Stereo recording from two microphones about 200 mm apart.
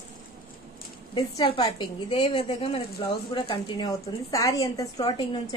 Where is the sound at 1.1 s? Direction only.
25° left (ahead or behind).